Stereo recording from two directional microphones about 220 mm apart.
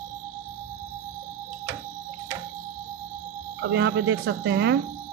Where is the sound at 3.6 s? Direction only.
50° right (ahead or behind).